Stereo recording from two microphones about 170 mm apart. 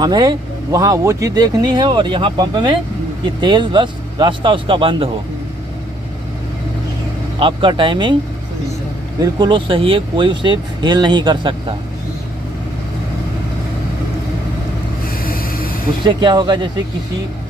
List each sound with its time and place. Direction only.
0.0 s speech: 25° right (ahead or behind)
7.3 s speech: 30° right (ahead or behind)
9.2 s speech: 25° right (ahead or behind)
15.2 s a sound: 60° left (ahead or behind)
16.0 s speech: 25° right (ahead or behind)